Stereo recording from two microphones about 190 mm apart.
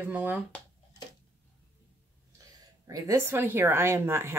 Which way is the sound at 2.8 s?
15° right (ahead or behind).